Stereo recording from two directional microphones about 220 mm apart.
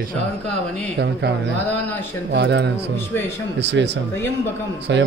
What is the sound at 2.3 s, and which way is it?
Speech, 50° right (ahead or behind).